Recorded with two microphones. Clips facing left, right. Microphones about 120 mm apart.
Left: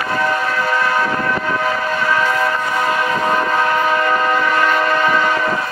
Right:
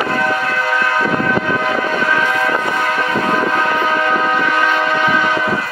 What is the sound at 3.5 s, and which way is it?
Train, centre (ahead or behind).